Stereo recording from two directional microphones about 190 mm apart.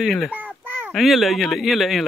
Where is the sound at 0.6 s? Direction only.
10° right (ahead or behind).